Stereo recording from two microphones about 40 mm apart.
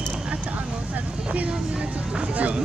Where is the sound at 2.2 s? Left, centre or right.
Right.